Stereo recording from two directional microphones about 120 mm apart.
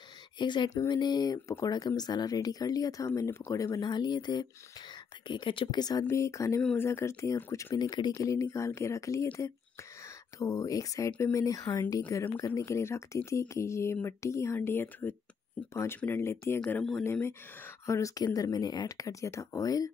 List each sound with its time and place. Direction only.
0.4 s speech: 40° left (ahead or behind); by 7.6 s 20° left (ahead or behind)
7.7 s speech: 35° left (ahead or behind)
10.4 s speech: 30° left (ahead or behind)
16.6 s speech: 10° left (ahead or behind)
17.0 s speech: 20° left (ahead or behind)